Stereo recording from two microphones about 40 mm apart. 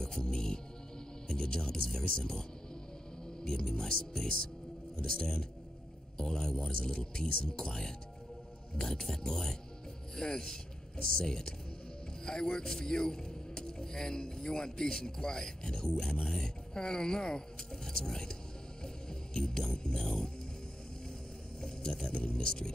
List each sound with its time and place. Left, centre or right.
0.0 s music: centre
1.3 s a man's voice: centre
3.4 s a man's voice: centre
21.5 s a sound: centre
22.4 s a man's voice: centre